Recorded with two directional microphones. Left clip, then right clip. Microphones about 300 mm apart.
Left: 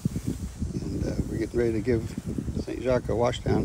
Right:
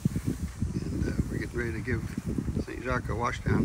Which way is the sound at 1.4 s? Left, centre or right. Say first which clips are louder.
Left 8 dB; left.